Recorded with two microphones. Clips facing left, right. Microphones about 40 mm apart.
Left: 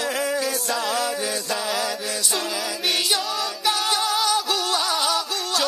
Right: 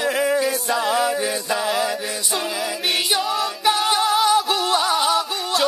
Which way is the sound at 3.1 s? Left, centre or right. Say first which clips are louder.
Right 3 dB; centre.